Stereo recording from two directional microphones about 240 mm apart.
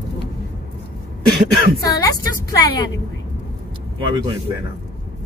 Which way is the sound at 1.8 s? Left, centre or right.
Centre.